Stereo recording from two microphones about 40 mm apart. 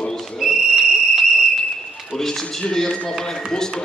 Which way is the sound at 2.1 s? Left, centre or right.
Centre.